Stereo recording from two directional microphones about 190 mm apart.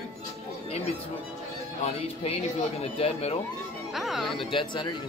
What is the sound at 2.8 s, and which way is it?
Speech, 35° left (ahead or behind).